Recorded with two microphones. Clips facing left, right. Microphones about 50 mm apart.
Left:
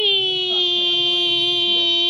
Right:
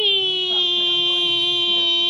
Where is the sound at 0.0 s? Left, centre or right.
Centre.